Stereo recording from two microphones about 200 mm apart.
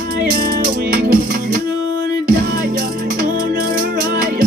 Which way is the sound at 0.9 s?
50° right (ahead or behind).